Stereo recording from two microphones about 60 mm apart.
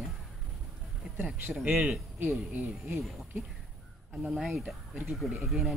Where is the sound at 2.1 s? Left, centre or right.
Right.